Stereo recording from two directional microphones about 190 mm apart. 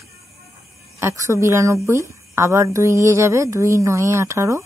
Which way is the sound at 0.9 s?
15° right (ahead or behind).